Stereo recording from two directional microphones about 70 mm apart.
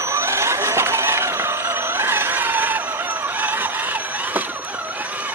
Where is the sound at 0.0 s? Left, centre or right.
Right.